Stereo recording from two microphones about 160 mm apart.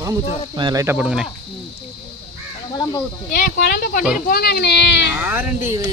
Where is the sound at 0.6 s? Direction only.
30° right (ahead or behind).